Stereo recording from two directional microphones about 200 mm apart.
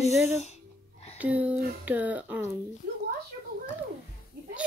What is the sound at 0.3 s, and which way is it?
Speech, 35° left (ahead or behind).